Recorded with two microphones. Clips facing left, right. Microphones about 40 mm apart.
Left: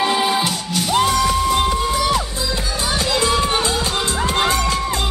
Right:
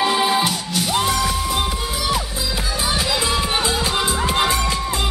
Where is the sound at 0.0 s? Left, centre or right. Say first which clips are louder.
Even; centre.